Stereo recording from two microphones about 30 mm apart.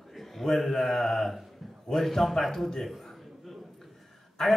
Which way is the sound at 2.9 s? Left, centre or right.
Centre.